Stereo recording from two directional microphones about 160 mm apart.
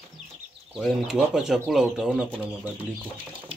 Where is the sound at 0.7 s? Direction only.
Centre (ahead or behind).